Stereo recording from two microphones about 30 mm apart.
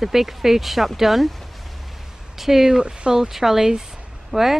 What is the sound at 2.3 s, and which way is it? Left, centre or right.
Speech, centre.